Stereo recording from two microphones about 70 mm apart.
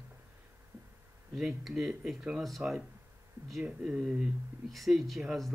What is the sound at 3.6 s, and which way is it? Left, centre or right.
Speech, centre.